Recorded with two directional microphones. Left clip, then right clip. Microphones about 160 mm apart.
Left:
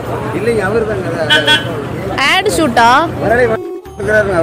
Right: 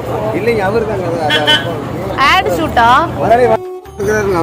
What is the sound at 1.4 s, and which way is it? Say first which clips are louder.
Music: even; 15° left (ahead or behind).